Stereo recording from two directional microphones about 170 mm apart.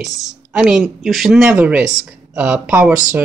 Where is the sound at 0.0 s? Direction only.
Centre (ahead or behind).